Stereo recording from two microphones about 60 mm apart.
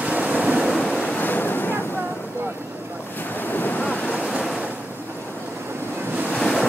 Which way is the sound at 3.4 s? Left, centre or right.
Left.